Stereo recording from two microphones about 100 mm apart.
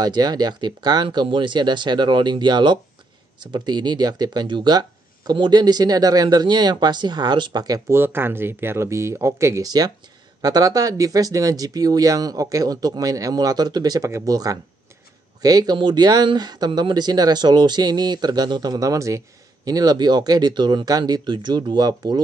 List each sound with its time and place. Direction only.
0.0 s speech: 45° right (ahead or behind)
7.9 s speech: 25° right (ahead or behind)
9.7 s speech: 40° right (ahead or behind)